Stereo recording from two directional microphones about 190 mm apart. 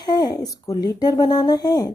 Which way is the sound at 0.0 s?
20° left (ahead or behind).